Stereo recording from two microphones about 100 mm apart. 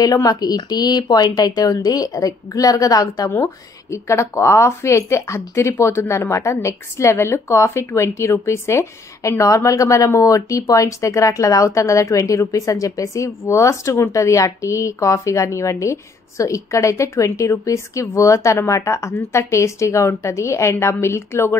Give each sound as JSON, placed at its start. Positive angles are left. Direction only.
{"t": 0.0, "sound": "speech", "side_deg": 40}
{"t": 3.3, "sound": "speech", "side_deg": 25}